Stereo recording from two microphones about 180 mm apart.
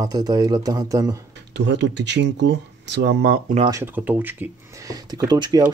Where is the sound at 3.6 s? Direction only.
15° right (ahead or behind).